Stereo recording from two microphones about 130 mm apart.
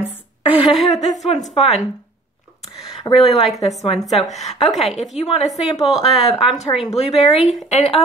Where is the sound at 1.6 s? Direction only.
Centre (ahead or behind).